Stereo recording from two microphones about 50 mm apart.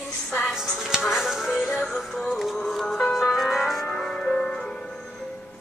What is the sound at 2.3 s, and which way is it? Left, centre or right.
Music, centre.